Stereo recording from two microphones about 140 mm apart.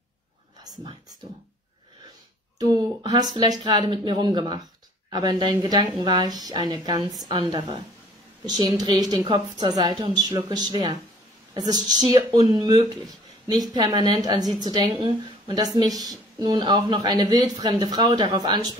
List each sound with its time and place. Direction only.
2.7 s a woman's voice: 25° right (ahead or behind)
9.3 s a woman's voice: 40° right (ahead or behind)